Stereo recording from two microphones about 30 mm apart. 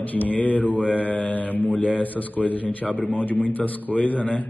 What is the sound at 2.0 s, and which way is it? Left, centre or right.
Speech, left.